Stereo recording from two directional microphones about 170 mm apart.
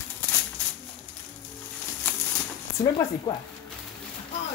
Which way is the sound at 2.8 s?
30° left (ahead or behind).